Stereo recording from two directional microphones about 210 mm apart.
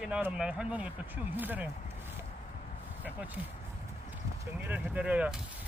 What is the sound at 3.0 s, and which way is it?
Speech, 10° right (ahead or behind).